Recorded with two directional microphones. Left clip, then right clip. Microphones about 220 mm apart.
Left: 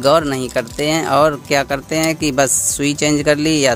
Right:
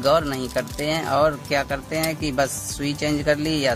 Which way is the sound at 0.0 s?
45° left (ahead or behind).